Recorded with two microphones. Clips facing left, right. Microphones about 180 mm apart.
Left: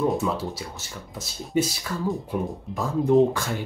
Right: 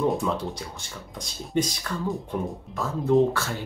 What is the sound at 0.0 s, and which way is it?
Speech, 5° left (ahead or behind).